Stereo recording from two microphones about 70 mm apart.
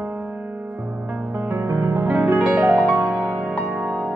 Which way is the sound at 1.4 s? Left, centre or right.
Right.